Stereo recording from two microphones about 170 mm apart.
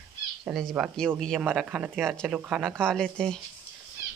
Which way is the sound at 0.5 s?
Centre (ahead or behind).